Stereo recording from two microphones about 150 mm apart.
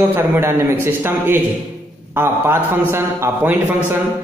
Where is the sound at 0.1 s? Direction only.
15° right (ahead or behind).